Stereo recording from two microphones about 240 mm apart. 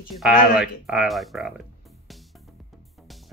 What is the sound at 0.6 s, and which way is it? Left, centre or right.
Music, centre.